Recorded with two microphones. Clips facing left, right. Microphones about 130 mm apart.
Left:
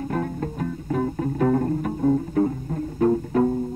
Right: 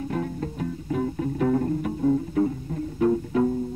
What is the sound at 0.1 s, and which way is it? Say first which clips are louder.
Music: left 2 dB; 45° left (ahead or behind).